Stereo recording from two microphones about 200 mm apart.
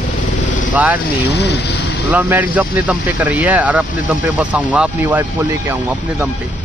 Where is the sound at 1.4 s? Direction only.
60° left (ahead or behind).